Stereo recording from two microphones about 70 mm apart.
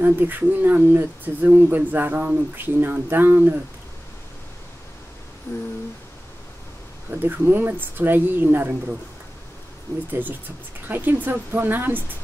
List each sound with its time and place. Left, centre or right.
0.0 s speech: right
5.5 s a sound: left
7.1 s speech: right
10.9 s speech: right